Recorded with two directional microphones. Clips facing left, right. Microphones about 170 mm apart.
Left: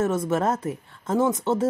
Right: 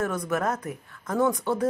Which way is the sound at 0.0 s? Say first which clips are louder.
Left 4 dB; 25° left (ahead or behind).